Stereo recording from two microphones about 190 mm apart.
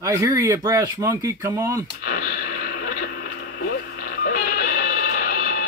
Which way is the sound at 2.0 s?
45° left (ahead or behind).